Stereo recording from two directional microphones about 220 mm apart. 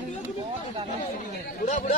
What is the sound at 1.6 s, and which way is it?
Speech, 35° left (ahead or behind).